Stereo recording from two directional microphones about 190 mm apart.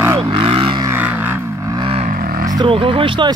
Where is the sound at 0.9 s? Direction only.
10° right (ahead or behind).